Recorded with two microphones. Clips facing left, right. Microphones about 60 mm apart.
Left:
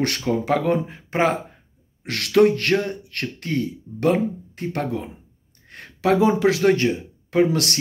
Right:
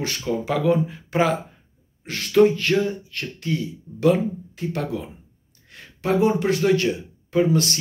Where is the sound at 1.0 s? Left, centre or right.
Left.